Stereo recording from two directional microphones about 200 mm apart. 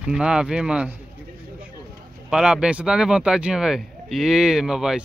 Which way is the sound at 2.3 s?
5° right (ahead or behind).